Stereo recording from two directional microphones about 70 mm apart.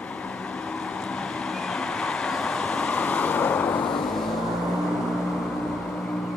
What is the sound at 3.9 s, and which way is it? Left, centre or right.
Vehicle, centre.